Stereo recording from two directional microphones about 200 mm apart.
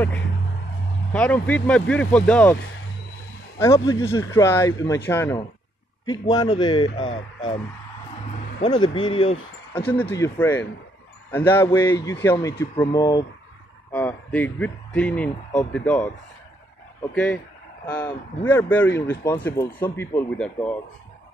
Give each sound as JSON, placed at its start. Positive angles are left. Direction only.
{"t": 1.1, "sound": "speech", "side_deg": 5}
{"t": 8.6, "sound": "speech", "side_deg": 20}
{"t": 10.1, "sound": "speech", "side_deg": 15}
{"t": 17.1, "sound": "speech", "side_deg": 5}